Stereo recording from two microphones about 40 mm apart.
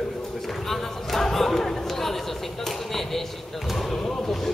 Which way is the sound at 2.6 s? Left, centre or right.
Centre.